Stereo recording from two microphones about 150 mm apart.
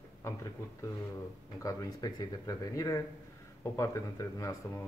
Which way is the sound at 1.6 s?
25° left (ahead or behind).